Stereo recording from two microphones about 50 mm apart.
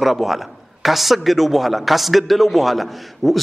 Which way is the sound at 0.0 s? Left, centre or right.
Centre.